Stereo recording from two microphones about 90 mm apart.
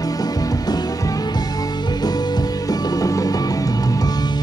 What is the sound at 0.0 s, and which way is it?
Music, 45° left (ahead or behind).